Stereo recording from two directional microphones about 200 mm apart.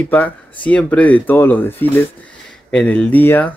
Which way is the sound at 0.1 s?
5° left (ahead or behind).